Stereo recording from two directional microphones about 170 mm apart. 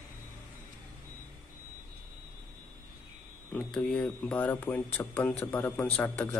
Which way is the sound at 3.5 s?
5° left (ahead or behind).